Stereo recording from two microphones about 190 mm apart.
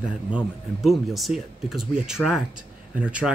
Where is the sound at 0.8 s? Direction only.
Centre (ahead or behind).